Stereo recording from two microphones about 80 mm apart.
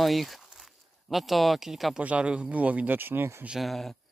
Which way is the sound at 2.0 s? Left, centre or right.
Centre.